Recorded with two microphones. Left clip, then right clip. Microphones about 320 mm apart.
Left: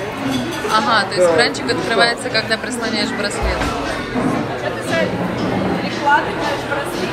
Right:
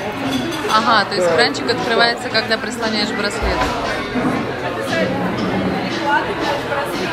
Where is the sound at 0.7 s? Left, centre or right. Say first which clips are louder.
Even; centre.